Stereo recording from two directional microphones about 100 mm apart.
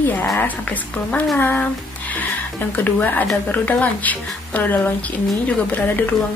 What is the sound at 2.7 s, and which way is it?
A woman's voice, 20° left (ahead or behind).